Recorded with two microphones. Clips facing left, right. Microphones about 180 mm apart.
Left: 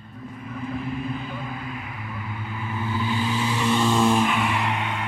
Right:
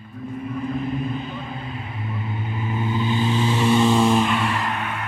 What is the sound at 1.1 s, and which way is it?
Vehicle, 25° right (ahead or behind).